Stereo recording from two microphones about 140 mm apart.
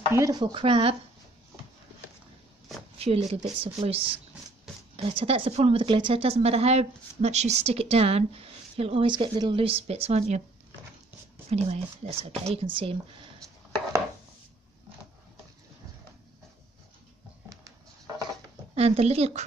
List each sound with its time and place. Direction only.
0.1 s speech: 25° right (ahead or behind)
3.0 s a woman's voice: 50° right (ahead or behind)
11.5 s a woman's voice: 50° right (ahead or behind)
17.5 s a sound: 25° right (ahead or behind)
18.8 s a woman's voice: 45° right (ahead or behind)